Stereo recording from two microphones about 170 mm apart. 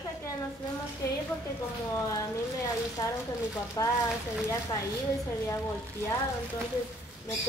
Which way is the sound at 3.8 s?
20° left (ahead or behind).